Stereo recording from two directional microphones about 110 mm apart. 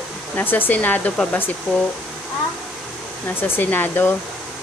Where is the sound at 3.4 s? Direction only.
20° left (ahead or behind).